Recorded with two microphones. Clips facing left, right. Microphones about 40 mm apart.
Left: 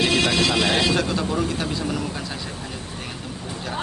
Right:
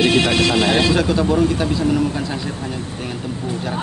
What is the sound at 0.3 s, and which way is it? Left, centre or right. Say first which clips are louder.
Speech: right 4 dB; right.